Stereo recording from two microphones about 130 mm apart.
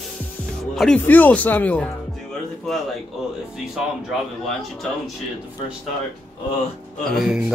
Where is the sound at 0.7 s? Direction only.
Centre (ahead or behind).